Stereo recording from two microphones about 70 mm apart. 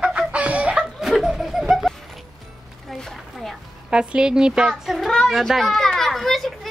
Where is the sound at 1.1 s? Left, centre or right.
Centre.